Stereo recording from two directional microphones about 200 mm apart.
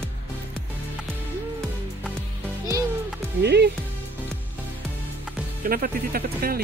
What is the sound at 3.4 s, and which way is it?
Speech, 55° right (ahead or behind).